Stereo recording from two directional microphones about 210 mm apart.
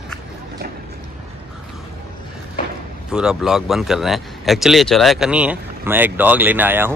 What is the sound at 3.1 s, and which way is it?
Speech, 5° right (ahead or behind).